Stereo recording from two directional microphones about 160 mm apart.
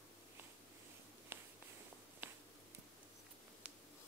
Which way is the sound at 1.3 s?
15° right (ahead or behind).